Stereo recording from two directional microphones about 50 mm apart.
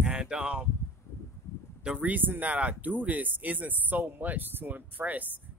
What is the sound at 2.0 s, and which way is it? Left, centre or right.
Speech, right.